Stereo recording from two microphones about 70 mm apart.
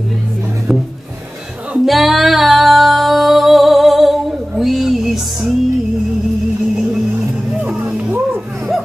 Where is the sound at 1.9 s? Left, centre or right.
Centre.